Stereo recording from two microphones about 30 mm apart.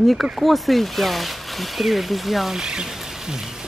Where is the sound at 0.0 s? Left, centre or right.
Centre.